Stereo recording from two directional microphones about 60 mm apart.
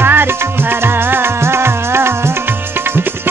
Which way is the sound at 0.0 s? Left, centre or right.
Right.